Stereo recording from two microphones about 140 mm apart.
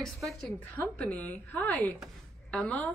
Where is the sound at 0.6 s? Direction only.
10° left (ahead or behind).